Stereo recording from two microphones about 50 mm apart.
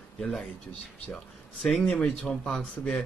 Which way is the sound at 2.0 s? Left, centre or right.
Centre.